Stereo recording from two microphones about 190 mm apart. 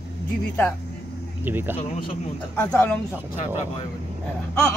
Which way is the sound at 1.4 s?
10° right (ahead or behind).